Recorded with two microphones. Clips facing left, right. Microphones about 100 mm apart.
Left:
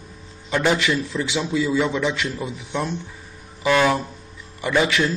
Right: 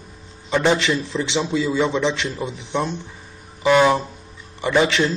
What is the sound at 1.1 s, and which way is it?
Speech, 20° right (ahead or behind).